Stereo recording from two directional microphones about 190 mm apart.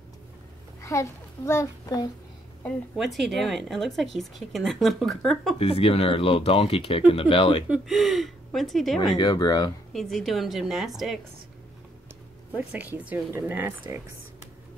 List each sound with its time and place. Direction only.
0.7 s a child's voice: 15° left (ahead or behind)
2.6 s a woman's voice: centre (ahead or behind)
5.6 s speech: 30° left (ahead or behind)
7.7 s a woman's voice: centre (ahead or behind)
9.1 s speech: 20° left (ahead or behind)
9.9 s a woman's voice: centre (ahead or behind)
12.5 s speech: 10° right (ahead or behind)